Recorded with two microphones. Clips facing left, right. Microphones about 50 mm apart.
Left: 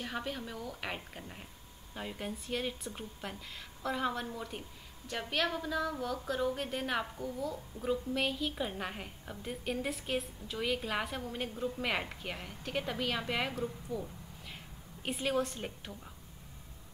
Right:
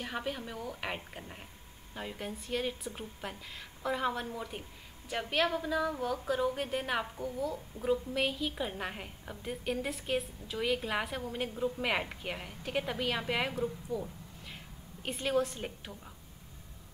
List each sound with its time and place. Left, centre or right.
0.0 s a woman's voice: centre